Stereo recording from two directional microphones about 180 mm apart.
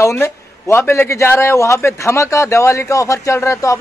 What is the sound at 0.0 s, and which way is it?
A man's voice, 15° left (ahead or behind).